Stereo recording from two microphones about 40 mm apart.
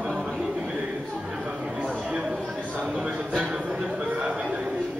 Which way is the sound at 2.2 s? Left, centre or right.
Centre.